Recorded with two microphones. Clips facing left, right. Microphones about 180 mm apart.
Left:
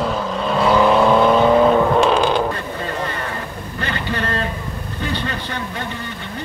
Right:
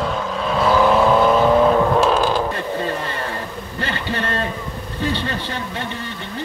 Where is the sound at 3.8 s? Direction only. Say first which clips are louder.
Even; 25° right (ahead or behind).